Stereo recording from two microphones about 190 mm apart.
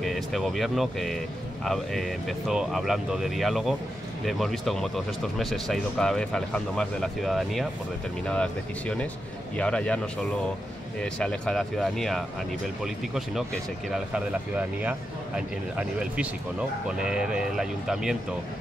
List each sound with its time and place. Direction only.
0.0 s speech: centre (ahead or behind)